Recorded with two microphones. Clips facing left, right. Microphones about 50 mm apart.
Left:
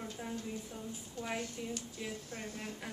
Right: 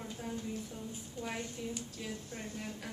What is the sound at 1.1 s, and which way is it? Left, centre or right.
A woman's voice, centre.